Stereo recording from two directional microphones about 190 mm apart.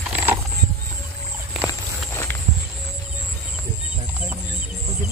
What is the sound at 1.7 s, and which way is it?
Walk, 15° left (ahead or behind).